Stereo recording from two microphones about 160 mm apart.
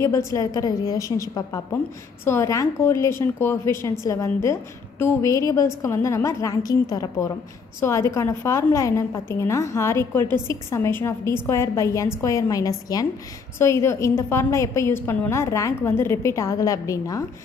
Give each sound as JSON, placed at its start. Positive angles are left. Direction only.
{"t": 0.0, "sound": "a woman's voice", "side_deg": 20}